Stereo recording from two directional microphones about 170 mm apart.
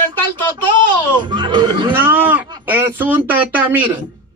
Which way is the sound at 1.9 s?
10° right (ahead or behind).